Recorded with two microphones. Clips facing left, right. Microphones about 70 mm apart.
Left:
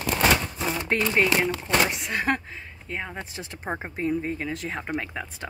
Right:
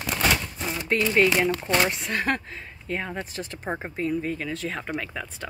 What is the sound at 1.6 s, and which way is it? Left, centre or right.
Speech, centre.